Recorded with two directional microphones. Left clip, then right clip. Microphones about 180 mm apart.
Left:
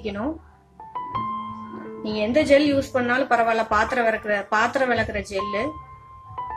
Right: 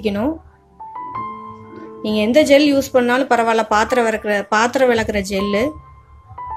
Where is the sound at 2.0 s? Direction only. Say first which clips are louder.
Right 7 dB; 50° right (ahead or behind).